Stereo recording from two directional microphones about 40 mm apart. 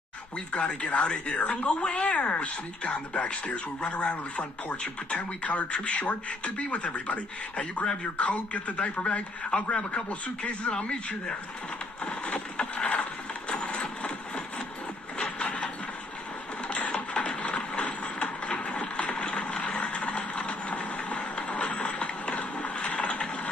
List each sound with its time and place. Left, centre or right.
0.5 s speech: left
7.8 s a man's voice: left
8.2 s a man's voice: left
12.0 s vehicle: left
13.5 s a sound: left